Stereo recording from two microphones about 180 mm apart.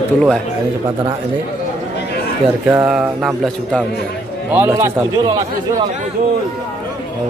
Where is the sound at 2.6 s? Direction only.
5° right (ahead or behind).